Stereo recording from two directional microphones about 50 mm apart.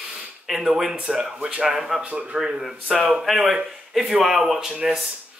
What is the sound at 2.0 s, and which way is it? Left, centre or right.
Speech, right.